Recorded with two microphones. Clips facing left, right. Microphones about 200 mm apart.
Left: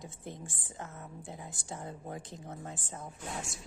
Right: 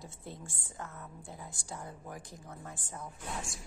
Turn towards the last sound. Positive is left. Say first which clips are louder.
# left 1 dB
turn(degrees=25)  # may be behind; listen again after turning